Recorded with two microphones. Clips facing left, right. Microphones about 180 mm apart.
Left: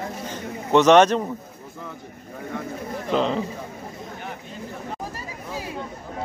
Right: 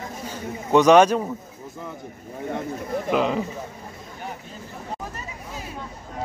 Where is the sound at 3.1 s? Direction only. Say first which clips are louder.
Even; 5° right (ahead or behind).